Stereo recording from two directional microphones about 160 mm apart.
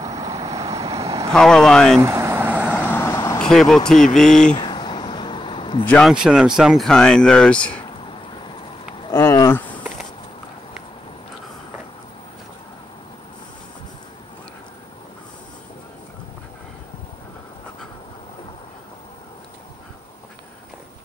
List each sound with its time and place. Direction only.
0.0 s vehicle: 25° right (ahead or behind)
1.3 s speech: 5° left (ahead or behind)
2.0 s vehicle: 15° right (ahead or behind)
2.7 s vehicle: 10° left (ahead or behind)
3.3 s speech: 5° left (ahead or behind)
4.6 s a sound: 30° left (ahead or behind)
5.9 s speech: 5° left (ahead or behind)
9.0 s a sound: 20° left (ahead or behind)